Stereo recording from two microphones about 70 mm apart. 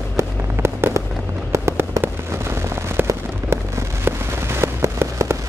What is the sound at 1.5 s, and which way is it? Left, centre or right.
Fireworks, right.